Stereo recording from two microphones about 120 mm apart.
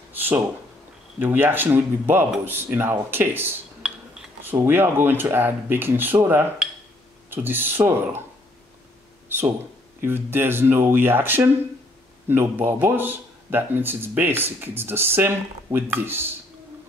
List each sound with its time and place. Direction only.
0.1 s a sound: 15° right (ahead or behind)
1.2 s a man's voice: 15° right (ahead or behind)
3.8 s cutlery: 5° right (ahead or behind)
4.4 s a man's voice: 15° right (ahead or behind)
10.0 s a man's voice: 20° right (ahead or behind)